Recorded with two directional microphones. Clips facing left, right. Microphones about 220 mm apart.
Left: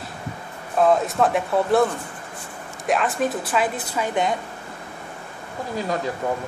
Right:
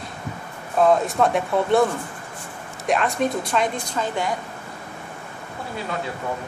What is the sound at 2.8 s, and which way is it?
A woman's voice, centre (ahead or behind).